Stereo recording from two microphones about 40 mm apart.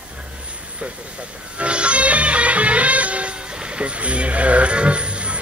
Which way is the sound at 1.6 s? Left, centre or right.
Right.